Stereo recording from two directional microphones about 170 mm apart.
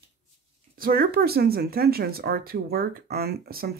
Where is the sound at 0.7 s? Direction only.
60° right (ahead or behind).